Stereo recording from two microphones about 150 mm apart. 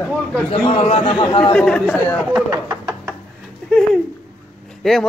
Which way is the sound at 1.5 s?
5° left (ahead or behind).